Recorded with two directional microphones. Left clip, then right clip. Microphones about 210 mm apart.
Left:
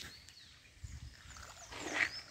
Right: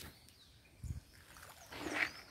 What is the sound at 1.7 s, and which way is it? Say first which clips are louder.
Wild animals: left 2 dB; 20° right (ahead or behind).